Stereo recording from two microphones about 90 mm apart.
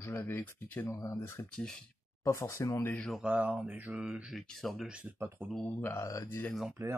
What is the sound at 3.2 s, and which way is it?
Speech, 15° right (ahead or behind).